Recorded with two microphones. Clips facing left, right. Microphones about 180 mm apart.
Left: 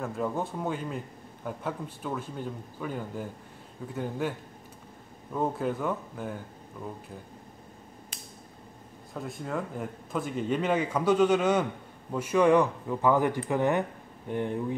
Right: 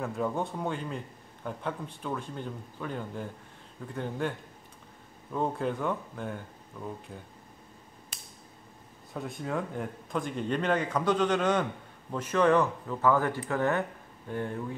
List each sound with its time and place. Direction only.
0.0 s a man's voice: centre (ahead or behind)
9.1 s a man's voice: centre (ahead or behind); by 14.8 s 15° left (ahead or behind)